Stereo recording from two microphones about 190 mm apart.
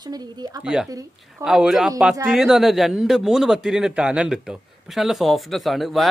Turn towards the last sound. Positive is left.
turn(degrees=0)  # may be behind; listen again after turning